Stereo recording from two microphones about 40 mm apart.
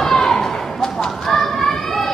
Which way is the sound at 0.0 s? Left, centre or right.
Centre.